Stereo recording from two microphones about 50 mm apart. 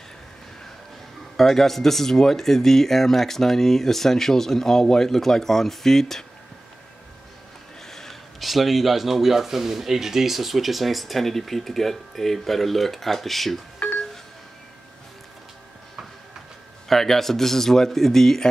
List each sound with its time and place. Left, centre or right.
1.3 s speech: centre
7.8 s speech: centre
13.8 s a sound: centre
16.8 s speech: centre